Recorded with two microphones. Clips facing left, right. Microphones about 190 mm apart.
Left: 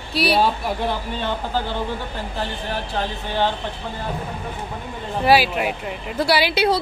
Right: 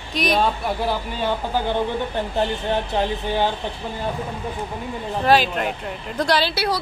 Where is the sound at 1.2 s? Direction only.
15° right (ahead or behind).